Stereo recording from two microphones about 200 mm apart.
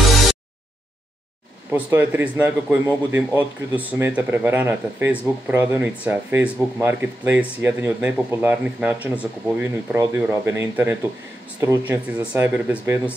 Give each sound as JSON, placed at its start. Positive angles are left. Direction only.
{"t": 1.7, "sound": "speech", "side_deg": -10}